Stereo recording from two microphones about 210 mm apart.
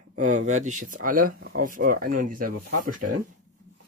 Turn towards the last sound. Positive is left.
turn(degrees=-40)  # may be behind; listen again after turning